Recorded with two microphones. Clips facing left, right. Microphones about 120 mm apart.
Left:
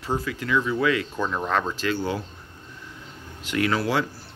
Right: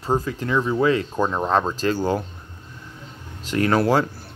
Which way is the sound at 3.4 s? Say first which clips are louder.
Right 5 dB; 40° right (ahead or behind).